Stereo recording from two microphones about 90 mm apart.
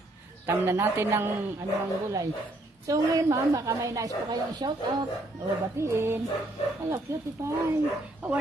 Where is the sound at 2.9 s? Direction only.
40° right (ahead or behind).